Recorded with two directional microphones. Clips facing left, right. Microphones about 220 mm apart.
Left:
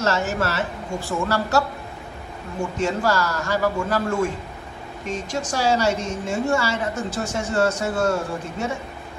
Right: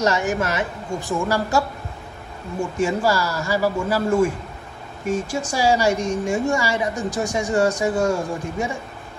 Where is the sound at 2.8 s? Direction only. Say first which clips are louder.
Right 2 dB; 10° right (ahead or behind).